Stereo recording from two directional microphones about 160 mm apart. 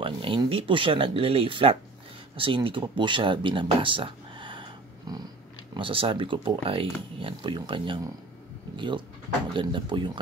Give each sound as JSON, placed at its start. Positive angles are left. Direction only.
{"t": 0.0, "sound": "speech", "side_deg": -30}